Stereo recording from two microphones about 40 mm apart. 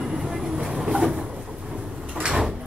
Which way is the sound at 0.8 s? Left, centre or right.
Centre.